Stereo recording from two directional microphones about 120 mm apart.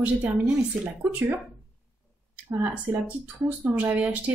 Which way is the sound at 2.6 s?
15° right (ahead or behind).